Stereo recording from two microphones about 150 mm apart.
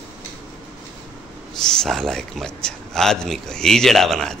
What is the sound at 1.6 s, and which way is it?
Speech, 5° left (ahead or behind).